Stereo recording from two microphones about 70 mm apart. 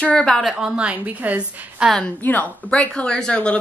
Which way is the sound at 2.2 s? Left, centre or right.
Left.